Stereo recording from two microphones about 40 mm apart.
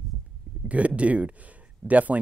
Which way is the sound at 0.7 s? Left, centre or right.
Right.